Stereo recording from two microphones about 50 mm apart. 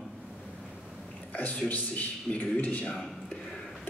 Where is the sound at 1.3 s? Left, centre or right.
Left.